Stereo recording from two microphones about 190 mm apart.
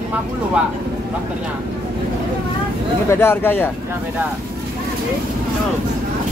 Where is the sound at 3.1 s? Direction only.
10° left (ahead or behind).